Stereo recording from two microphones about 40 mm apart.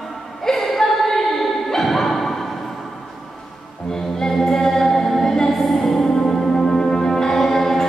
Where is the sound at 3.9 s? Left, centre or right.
Centre.